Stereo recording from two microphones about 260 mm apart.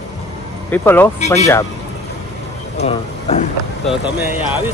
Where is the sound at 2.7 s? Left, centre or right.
Left.